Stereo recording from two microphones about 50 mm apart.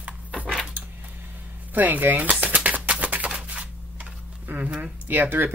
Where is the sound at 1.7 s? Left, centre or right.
Right.